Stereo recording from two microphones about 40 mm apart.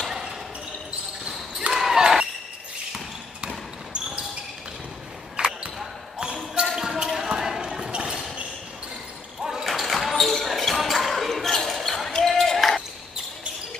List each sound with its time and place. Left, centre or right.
1.7 s basketball bounce: centre
6.1 s basketball bounce: centre
7.9 s basketball bounce: right
9.4 s a sound: centre
9.7 s basketball bounce: centre